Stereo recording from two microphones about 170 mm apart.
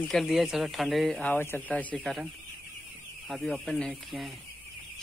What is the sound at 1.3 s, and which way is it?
Speech, 10° left (ahead or behind).